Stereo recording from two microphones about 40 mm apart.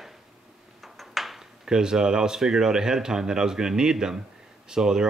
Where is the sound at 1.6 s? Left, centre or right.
Centre.